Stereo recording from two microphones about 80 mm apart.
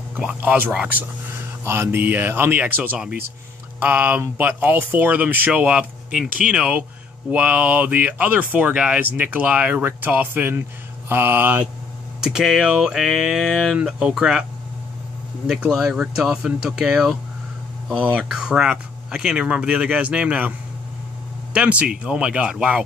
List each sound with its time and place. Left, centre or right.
0.2 s speech: centre
12.2 s speech: centre
15.8 s speech: centre
21.5 s speech: centre